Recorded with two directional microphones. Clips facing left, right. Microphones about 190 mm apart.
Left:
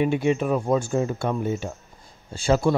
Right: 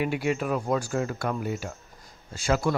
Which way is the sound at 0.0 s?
20° left (ahead or behind).